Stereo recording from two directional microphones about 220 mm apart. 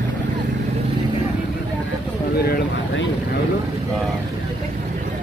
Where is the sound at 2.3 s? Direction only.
45° left (ahead or behind).